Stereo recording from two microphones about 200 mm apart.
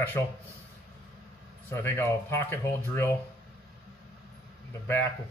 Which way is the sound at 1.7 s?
10° left (ahead or behind).